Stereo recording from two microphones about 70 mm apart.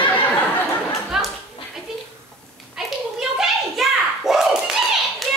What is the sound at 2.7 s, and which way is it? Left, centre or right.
Children playing, centre.